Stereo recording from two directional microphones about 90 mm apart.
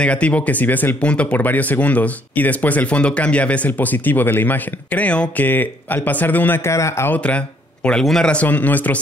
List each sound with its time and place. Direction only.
0.0 s speech: 15° left (ahead or behind); by 7.1 s 30° left (ahead or behind)
7.1 s speech: 15° left (ahead or behind)